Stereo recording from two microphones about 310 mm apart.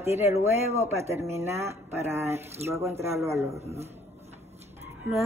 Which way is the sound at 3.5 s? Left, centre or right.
Centre.